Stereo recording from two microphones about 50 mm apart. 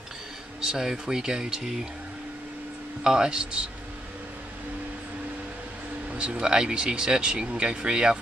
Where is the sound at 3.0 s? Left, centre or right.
Centre.